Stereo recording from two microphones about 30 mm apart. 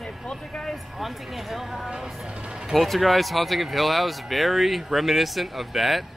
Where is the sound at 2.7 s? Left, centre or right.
Centre.